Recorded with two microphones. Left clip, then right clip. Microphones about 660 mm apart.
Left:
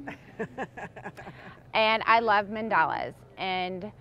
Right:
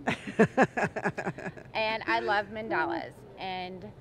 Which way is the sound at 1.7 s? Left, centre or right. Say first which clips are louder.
Left 7 dB; left.